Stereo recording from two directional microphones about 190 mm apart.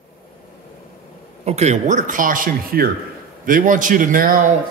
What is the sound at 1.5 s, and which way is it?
Speech, 35° right (ahead or behind).